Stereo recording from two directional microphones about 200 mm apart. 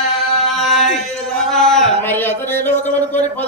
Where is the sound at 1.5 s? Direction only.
Centre (ahead or behind).